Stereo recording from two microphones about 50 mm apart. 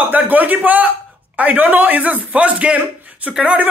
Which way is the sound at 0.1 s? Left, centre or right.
Right.